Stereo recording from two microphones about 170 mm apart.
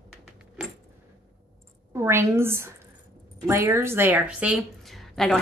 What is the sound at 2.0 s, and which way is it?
A woman's voice, 15° right (ahead or behind).